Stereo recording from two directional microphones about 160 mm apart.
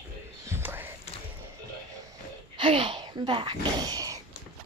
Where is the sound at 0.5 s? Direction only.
15° right (ahead or behind).